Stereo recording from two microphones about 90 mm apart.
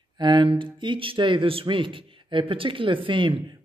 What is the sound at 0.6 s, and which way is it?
Speech, 65° right (ahead or behind).